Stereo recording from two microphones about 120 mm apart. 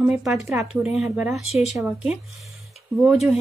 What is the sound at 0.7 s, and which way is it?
A woman's voice, 10° right (ahead or behind).